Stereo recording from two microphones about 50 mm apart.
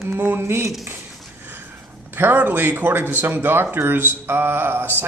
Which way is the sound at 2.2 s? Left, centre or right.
Right.